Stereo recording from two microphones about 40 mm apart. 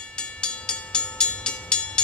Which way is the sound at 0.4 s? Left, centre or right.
Left.